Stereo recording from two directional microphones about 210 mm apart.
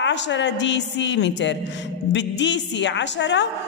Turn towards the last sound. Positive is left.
turn(degrees=60)  # may be behind; listen again after turning